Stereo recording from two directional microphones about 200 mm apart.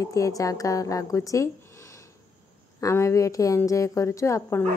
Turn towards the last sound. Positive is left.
turn(degrees=15)  # may be behind; listen again after turning